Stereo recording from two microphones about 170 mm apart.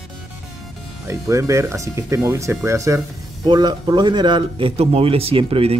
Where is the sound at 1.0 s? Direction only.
20° right (ahead or behind).